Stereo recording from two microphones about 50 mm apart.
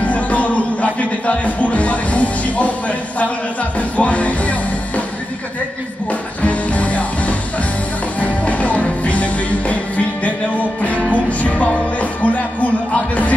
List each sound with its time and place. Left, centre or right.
0.0 s music: left
3.9 s music: left
6.4 s music: left